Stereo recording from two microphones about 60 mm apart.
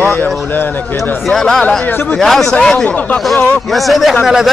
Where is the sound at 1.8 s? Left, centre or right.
Left.